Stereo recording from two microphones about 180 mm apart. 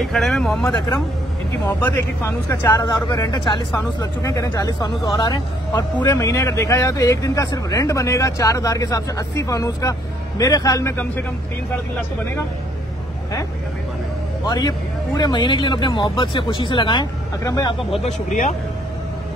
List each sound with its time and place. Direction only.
0.0 s speech: centre (ahead or behind)
1.8 s speech: 10° left (ahead or behind)
14.4 s speech: 20° left (ahead or behind)
18.0 s speech: 40° left (ahead or behind)